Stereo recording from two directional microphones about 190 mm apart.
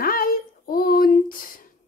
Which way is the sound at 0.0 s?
50° left (ahead or behind).